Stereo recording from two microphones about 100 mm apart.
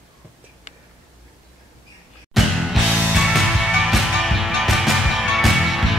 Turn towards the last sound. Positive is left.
turn(degrees=0)  # may be behind; listen again after turning